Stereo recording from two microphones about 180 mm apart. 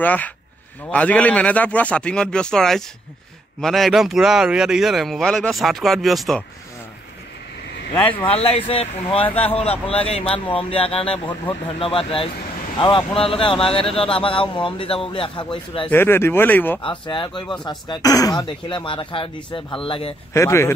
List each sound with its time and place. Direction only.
0.0 s speech: 10° left (ahead or behind)
8.1 s speech: 30° left (ahead or behind)
15.9 s speech: 10° left (ahead or behind)
16.8 s speech: 25° left (ahead or behind)
20.3 s speech: 15° left (ahead or behind)